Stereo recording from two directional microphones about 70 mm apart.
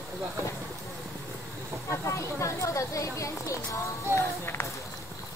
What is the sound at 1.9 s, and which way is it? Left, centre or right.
Speech, left.